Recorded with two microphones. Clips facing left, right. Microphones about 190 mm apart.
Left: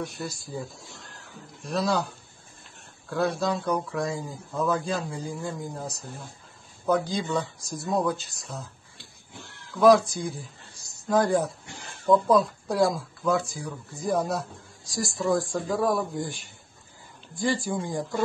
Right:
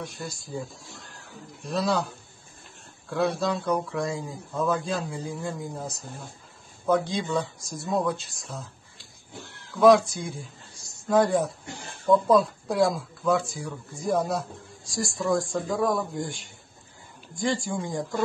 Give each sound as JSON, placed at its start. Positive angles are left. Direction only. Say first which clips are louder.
{"t": 0.0, "sound": "speech", "louder": "left 3 dB", "side_deg": 0}
{"t": 9.8, "sound": "speech", "louder": "right 1 dB", "side_deg": 0}
{"t": 17.6, "sound": "speech", "louder": "left 1 dB", "side_deg": 0}